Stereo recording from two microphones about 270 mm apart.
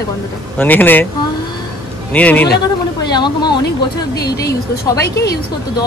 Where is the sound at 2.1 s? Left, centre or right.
Centre.